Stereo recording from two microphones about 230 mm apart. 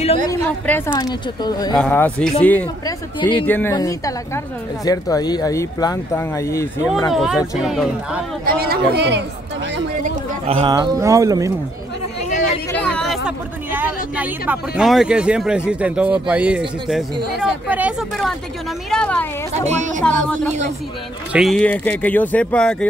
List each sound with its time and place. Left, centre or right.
0.3 s speech: centre
7.1 s speech: centre
8.5 s speech: right
9.9 s speech: right
12.7 s speech: centre
19.7 s speech: right
20.0 s speech: centre